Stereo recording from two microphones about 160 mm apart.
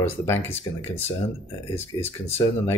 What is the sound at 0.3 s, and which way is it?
Speech, 15° left (ahead or behind).